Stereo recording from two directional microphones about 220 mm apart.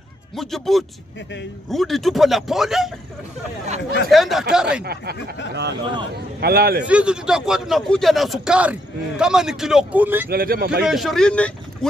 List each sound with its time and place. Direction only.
0.4 s a man's voice: centre (ahead or behind)
4.1 s a man's voice: centre (ahead or behind)
5.5 s a man's voice: 50° right (ahead or behind)
6.9 s a man's voice: 5° right (ahead or behind)
10.3 s a man's voice: 45° right (ahead or behind)
10.8 s a man's voice: centre (ahead or behind)